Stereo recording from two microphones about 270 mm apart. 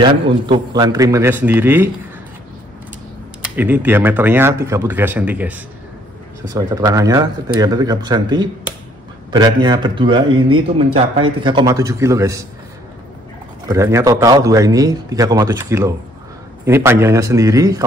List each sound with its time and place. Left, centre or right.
0.0 s a man's voice: centre
3.5 s a man's voice: centre
13.7 s a man's voice: centre